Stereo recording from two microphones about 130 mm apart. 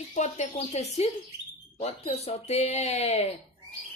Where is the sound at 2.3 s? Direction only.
55° left (ahead or behind).